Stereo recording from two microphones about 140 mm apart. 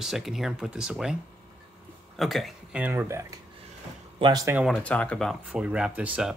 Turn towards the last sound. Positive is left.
turn(degrees=-5)  # may be behind; listen again after turning